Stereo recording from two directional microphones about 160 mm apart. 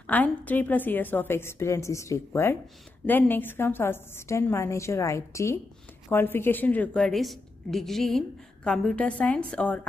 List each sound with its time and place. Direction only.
0.0 s a woman's voice: 10° left (ahead or behind)